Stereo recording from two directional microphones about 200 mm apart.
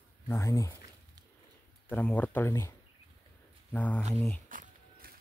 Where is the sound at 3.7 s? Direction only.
5° left (ahead or behind).